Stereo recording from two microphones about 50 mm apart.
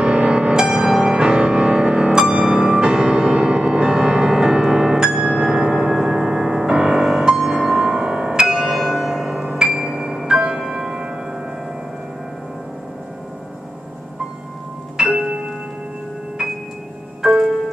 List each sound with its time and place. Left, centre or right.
0.0 s music: centre
8.6 s bell: centre
9.4 s music: centre
15.0 s music: centre
17.2 s music: centre